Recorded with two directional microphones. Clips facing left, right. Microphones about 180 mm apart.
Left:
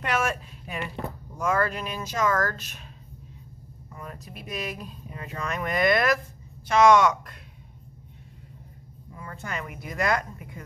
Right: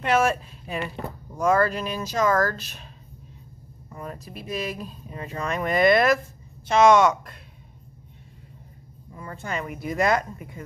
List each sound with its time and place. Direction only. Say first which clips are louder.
0.0 s speech: right 6 dB; 25° right (ahead or behind)
3.9 s speech: right 5 dB; 30° right (ahead or behind)
9.2 s speech: right 4 dB; 25° right (ahead or behind)